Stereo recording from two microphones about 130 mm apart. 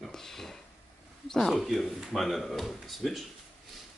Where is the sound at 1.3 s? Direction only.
Centre (ahead or behind).